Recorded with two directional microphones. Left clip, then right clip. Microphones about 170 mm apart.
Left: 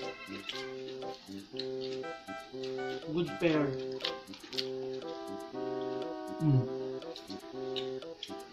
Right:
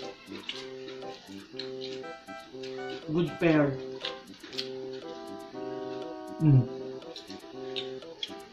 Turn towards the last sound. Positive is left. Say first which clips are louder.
# right 1 dB
turn(degrees=0)  # may be behind; listen again after turning